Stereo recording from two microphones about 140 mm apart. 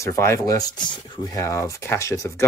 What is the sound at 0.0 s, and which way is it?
Speech, 20° left (ahead or behind).